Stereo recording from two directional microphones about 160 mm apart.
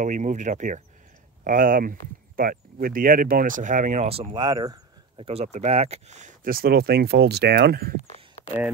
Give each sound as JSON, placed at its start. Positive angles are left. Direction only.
{"t": 0.0, "sound": "speech", "side_deg": -50}
{"t": 5.2, "sound": "speech", "side_deg": -40}